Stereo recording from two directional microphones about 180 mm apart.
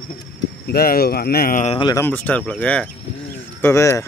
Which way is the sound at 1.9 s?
10° left (ahead or behind).